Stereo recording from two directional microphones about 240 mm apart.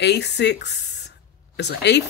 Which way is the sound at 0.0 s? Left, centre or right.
Left.